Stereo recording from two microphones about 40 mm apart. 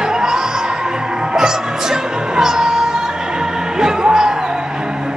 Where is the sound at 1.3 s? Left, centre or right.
Centre.